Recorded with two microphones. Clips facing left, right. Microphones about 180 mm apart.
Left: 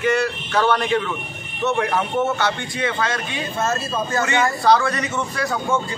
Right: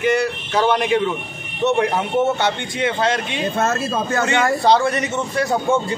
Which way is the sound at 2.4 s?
20° right (ahead or behind).